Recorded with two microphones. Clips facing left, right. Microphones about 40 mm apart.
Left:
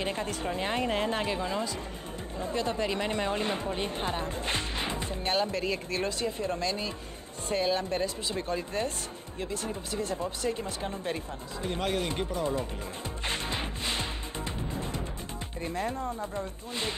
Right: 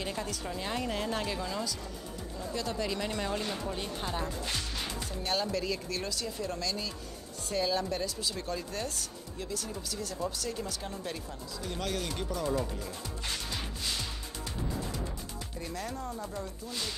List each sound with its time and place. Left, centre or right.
0.0 s speech: left
13.3 s music: left
15.6 s speech: left